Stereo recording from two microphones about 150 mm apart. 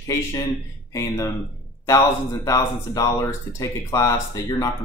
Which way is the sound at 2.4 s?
20° left (ahead or behind).